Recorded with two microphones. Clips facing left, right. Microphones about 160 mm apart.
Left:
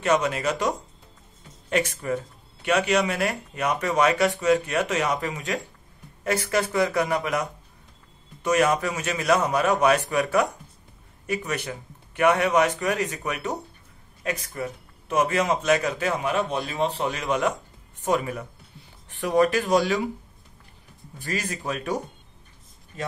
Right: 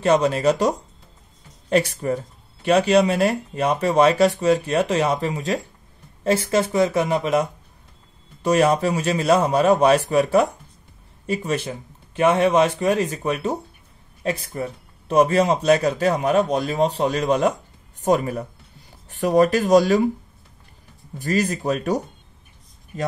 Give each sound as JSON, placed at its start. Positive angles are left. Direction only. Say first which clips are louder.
{"t": 0.0, "sound": "a man's voice", "louder": "right 5 dB", "side_deg": -35}
{"t": 21.2, "sound": "a man's voice", "louder": "right 9 dB", "side_deg": -40}